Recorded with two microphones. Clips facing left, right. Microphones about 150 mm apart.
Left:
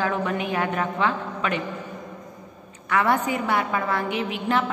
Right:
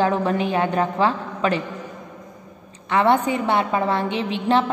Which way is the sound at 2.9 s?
25° right (ahead or behind).